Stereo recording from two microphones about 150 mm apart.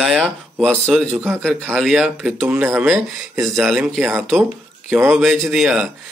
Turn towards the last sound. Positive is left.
turn(degrees=-5)  # may be behind; listen again after turning